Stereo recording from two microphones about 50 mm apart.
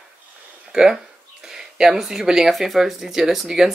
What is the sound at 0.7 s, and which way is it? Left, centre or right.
Speech, centre.